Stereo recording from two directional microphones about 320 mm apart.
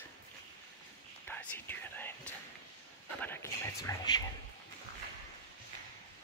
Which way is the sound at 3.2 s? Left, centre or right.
Centre.